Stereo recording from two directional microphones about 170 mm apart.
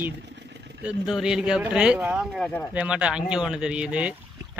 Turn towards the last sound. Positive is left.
turn(degrees=-5)  # may be behind; listen again after turning